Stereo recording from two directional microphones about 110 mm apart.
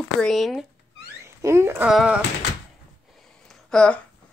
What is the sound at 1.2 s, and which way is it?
Speech, 25° right (ahead or behind).